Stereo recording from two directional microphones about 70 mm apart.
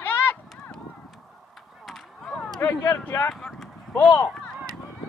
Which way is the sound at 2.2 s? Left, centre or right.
Centre.